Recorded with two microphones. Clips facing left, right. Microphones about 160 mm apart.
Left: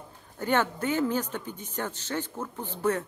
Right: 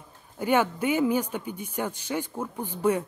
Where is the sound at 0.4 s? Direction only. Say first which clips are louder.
Right 3 dB; 10° right (ahead or behind).